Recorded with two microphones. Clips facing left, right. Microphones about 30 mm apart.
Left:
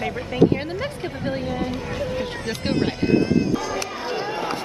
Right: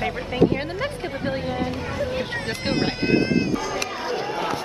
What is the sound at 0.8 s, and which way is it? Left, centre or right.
Speech, centre.